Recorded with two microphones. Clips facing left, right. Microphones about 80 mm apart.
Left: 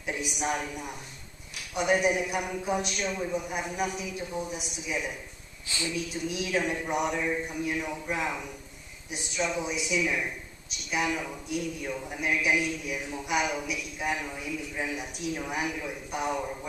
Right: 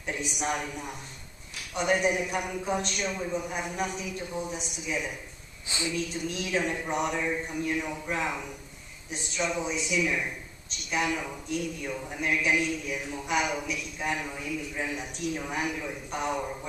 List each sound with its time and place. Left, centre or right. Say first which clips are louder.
0.0 s a man's voice: even; centre
5.7 s a woman's voice: right 1 dB; right
5.9 s a man's voice: even; centre